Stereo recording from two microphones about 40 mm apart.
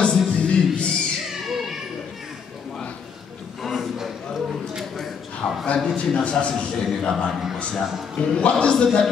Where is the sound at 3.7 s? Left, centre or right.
Centre.